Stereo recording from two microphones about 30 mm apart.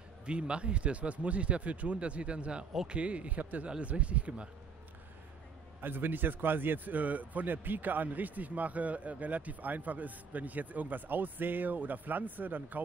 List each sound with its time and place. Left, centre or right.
0.3 s speech: right
5.9 s a man's voice: right